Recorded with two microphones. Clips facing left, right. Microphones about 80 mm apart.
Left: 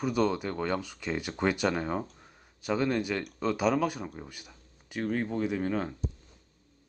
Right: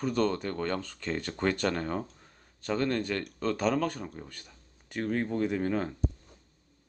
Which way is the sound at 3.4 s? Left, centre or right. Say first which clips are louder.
Left 1 dB; centre.